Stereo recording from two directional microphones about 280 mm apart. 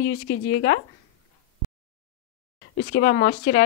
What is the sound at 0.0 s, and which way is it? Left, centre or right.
Speech, left.